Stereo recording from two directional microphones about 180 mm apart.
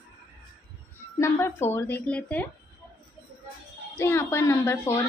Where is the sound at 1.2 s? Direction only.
15° left (ahead or behind).